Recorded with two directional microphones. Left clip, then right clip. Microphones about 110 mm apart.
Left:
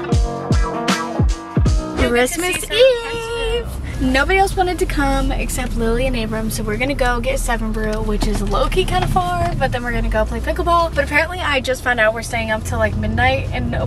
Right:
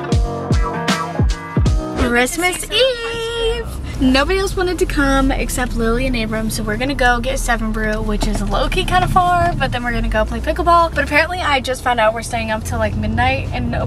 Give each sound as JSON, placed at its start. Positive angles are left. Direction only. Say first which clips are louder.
{"t": 0.1, "sound": "music", "louder": "even", "side_deg": 0}
{"t": 2.4, "sound": "speech", "louder": "left 2 dB", "side_deg": -15}
{"t": 8.2, "sound": "speech", "louder": "even", "side_deg": 20}
{"t": 8.5, "sound": "speech", "louder": "right 2 dB", "side_deg": -15}